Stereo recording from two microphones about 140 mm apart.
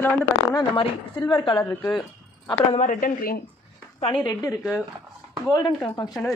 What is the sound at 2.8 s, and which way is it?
Speech, 70° left (ahead or behind).